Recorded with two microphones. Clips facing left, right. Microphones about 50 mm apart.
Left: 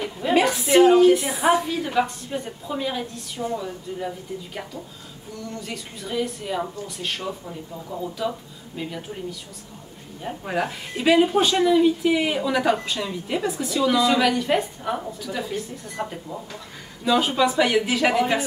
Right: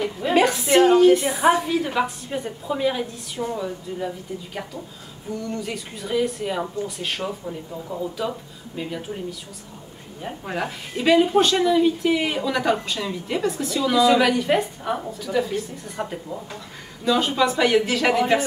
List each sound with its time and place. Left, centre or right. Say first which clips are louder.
0.0 s speech: right 1 dB; centre
5.6 s speech: right 3 dB; centre
7.9 s speech: right 2 dB; right
10.4 s speech: left 2 dB; centre
17.0 s speech: even; centre